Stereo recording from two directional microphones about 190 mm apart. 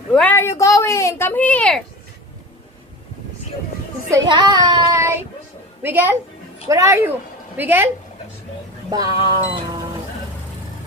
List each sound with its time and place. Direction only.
0.1 s speech: 10° left (ahead or behind)
4.1 s child singing: 20° right (ahead or behind)
5.8 s a woman's voice: 10° right (ahead or behind)
8.9 s music: 20° right (ahead or behind)